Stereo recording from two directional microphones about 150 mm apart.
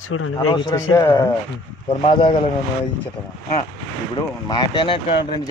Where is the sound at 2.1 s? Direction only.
35° left (ahead or behind).